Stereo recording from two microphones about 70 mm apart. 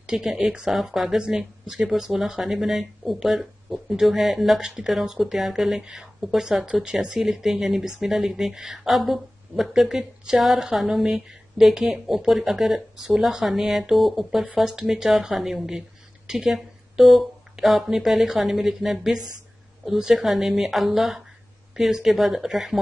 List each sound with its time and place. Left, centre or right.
0.0 s speech: centre